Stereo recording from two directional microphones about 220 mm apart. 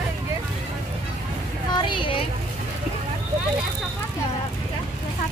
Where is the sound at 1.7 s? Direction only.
20° left (ahead or behind).